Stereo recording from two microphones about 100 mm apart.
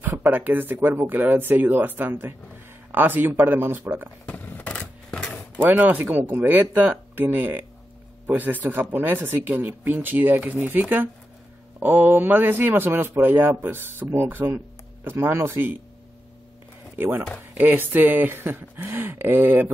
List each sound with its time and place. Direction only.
0.0 s speech: 20° right (ahead or behind)
4.3 s a sound: 15° left (ahead or behind)
5.6 s speech: 20° right (ahead or behind)
16.9 s speech: 25° right (ahead or behind)